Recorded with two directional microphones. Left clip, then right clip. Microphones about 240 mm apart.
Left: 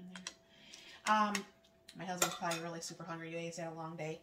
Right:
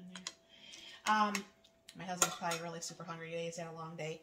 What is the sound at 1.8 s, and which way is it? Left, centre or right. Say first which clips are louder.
Dishes: right 1 dB; right.